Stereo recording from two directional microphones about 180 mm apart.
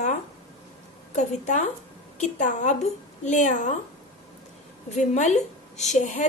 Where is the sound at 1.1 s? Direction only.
40° left (ahead or behind).